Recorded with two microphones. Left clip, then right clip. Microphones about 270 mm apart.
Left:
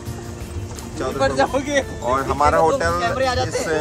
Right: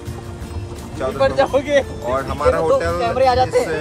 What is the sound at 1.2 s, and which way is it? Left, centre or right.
Speech, right.